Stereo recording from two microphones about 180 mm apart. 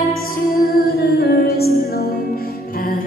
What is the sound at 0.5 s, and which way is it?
Music, 60° left (ahead or behind).